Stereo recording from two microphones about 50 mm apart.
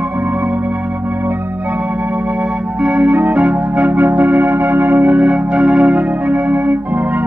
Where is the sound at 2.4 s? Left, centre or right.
Right.